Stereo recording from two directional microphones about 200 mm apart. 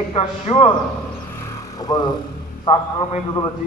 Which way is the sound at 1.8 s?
20° left (ahead or behind).